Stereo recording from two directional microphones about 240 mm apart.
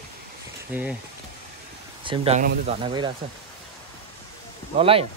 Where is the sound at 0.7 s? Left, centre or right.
Centre.